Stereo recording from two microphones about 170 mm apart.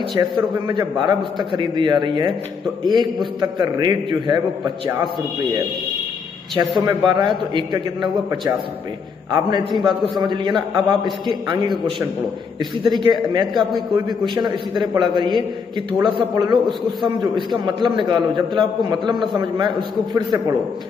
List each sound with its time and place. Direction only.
0.1 s a man's voice: 25° right (ahead or behind)
6.8 s a man's voice: 25° right (ahead or behind)
13.5 s a man's voice: centre (ahead or behind)
13.9 s a man's voice: 25° right (ahead or behind)